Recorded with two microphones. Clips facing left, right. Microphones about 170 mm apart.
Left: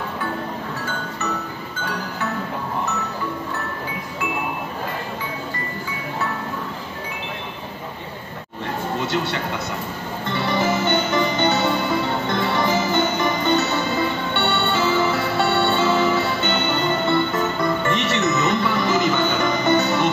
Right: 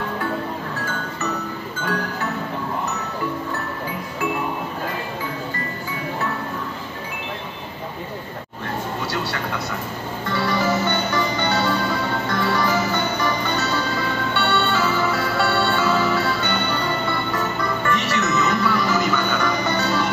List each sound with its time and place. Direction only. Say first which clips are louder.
9.0 s speech: left 3 dB; 20° left (ahead or behind)
10.3 s music: even; 20° left (ahead or behind)
17.8 s music: left 1 dB; 25° left (ahead or behind)